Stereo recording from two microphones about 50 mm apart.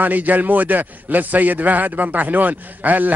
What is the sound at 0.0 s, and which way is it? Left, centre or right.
A man's voice, right.